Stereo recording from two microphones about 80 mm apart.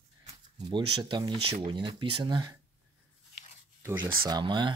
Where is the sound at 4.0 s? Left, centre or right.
Right.